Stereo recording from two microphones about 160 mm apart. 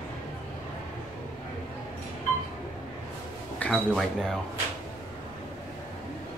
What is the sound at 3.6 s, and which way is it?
Speech, centre (ahead or behind).